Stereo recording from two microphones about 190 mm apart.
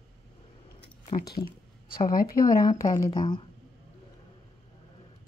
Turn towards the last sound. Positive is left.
turn(degrees=20)  # may be behind; listen again after turning